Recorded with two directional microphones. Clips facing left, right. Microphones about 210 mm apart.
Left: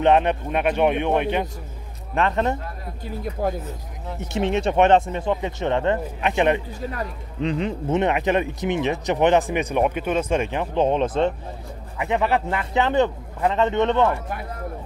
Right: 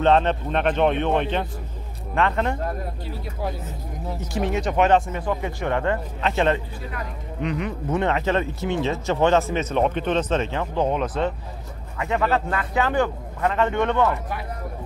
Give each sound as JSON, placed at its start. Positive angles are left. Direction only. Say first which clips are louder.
{"t": 0.0, "sound": "speech", "louder": "left 1 dB", "side_deg": 15}
{"t": 3.4, "sound": "speech", "louder": "left 5 dB", "side_deg": 50}
{"t": 4.3, "sound": "speech", "louder": "left 3 dB", "side_deg": 25}
{"t": 7.4, "sound": "speech", "louder": "left 3 dB", "side_deg": 30}